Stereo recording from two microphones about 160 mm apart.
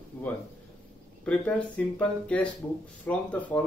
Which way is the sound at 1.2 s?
10° left (ahead or behind).